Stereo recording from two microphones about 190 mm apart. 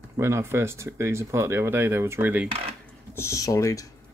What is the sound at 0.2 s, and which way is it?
Speech, 15° right (ahead or behind).